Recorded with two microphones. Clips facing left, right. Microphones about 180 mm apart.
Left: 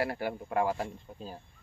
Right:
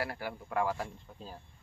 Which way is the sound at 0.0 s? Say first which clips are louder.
Left 5 dB; 25° left (ahead or behind).